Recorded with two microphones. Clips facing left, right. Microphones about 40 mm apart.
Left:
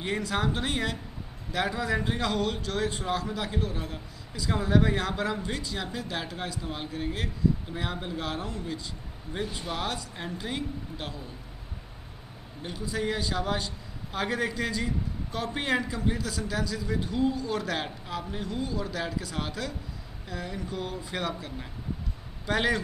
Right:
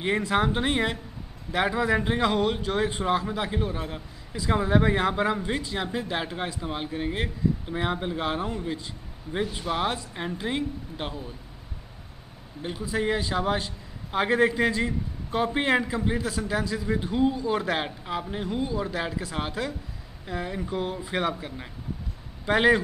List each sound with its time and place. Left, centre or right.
0.0 s a man's voice: right
12.6 s a man's voice: centre